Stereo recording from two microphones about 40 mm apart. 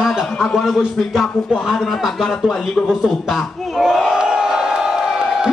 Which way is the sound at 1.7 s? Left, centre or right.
Centre.